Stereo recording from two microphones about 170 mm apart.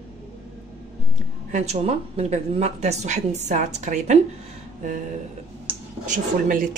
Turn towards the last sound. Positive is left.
turn(degrees=-55)  # may be behind; listen again after turning